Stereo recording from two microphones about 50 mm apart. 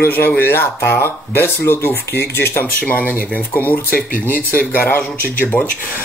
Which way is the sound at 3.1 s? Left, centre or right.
Left.